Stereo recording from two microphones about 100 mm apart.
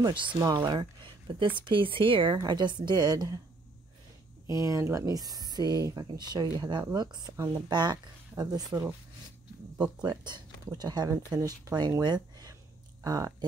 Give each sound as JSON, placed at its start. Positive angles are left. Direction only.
{"t": 0.0, "sound": "speech", "side_deg": -55}
{"t": 0.4, "sound": "speech", "side_deg": -40}
{"t": 2.3, "sound": "speech", "side_deg": -45}
{"t": 4.6, "sound": "speech", "side_deg": -30}
{"t": 12.0, "sound": "a sound", "side_deg": -45}
{"t": 13.0, "sound": "speech", "side_deg": -35}